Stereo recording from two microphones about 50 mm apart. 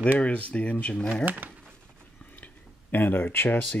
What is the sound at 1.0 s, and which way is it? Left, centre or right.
Speech, centre.